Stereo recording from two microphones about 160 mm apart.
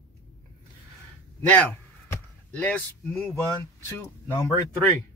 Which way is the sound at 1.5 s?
10° left (ahead or behind).